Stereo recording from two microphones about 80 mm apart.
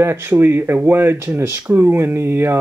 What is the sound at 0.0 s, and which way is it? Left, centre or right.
Speech, right.